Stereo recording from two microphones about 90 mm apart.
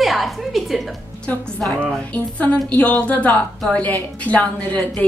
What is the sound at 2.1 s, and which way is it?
A woman's voice, 15° left (ahead or behind).